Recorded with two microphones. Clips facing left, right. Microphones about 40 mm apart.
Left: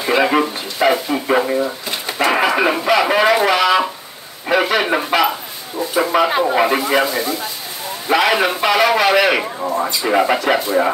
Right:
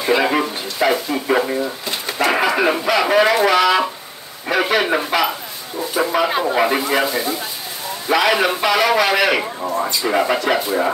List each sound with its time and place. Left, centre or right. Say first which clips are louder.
0.0 s speech: left 2 dB; centre
4.6 s speech: left 1 dB; centre
6.1 s speech: left 3 dB; left
6.6 s speech: left 2 dB; centre
7.1 s speech: left 1 dB; centre
8.1 s speech: left 1 dB; centre